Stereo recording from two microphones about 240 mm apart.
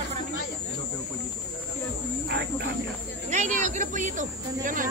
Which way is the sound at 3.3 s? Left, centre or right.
Right.